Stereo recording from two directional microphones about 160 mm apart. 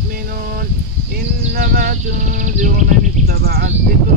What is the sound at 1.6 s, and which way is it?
Speech, 55° right (ahead or behind).